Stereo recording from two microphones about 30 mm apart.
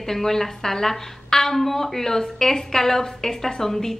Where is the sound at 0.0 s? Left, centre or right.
Centre.